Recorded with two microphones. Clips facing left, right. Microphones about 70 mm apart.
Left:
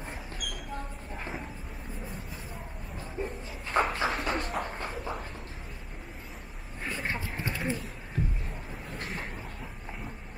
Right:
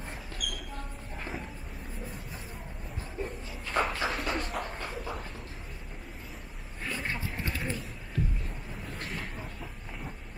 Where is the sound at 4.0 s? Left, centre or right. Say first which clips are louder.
Left 2 dB; centre.